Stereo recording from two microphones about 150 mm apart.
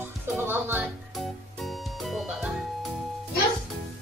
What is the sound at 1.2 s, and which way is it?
Music, centre (ahead or behind).